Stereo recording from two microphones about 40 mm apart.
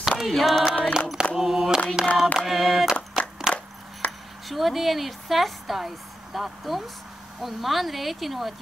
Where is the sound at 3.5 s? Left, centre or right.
Centre.